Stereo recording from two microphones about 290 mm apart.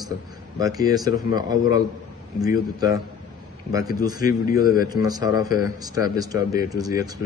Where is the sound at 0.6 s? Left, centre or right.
Centre.